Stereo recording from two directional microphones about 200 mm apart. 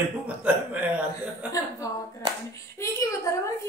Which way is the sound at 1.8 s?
15° left (ahead or behind).